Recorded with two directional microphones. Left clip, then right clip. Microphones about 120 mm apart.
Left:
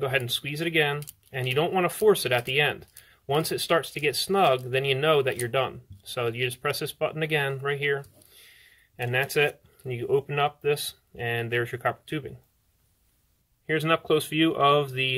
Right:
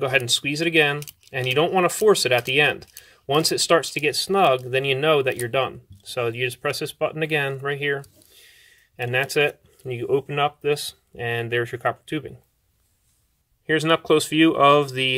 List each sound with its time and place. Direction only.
0.0 s speech: 40° right (ahead or behind)
13.7 s speech: 45° right (ahead or behind)